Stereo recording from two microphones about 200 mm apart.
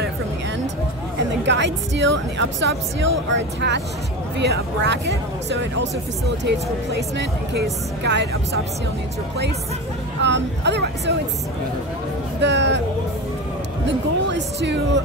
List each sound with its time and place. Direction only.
1.4 s speech: 60° right (ahead or behind)
8.0 s speech: 60° right (ahead or behind)
10.2 s speech: 60° right (ahead or behind)
12.4 s speech: 60° right (ahead or behind)
13.8 s speech: 60° right (ahead or behind)